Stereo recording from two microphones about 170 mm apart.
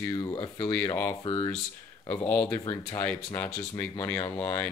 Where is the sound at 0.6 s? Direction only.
10° left (ahead or behind).